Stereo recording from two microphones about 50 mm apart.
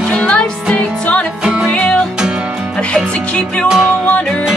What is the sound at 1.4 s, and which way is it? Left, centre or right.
Music, centre.